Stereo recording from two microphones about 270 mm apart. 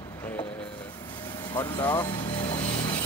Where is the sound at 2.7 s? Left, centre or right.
Centre.